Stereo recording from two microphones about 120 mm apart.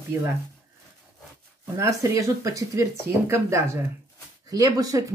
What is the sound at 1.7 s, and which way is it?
Speech, 25° right (ahead or behind).